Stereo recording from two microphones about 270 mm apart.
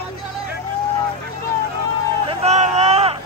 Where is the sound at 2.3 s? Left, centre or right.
Right.